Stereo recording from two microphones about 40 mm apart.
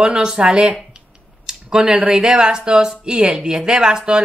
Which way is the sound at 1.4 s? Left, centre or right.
Centre.